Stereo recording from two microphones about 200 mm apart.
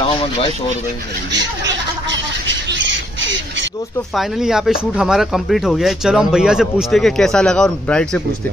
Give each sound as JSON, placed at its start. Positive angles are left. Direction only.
{"t": 0.0, "sound": "a sound", "side_deg": 25}
{"t": 1.6, "sound": "squawk", "side_deg": -65}
{"t": 4.1, "sound": "a man's voice", "side_deg": 0}